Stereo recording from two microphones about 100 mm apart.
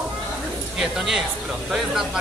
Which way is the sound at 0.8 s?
5° right (ahead or behind).